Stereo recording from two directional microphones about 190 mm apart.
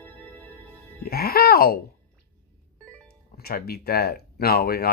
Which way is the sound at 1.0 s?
55° left (ahead or behind).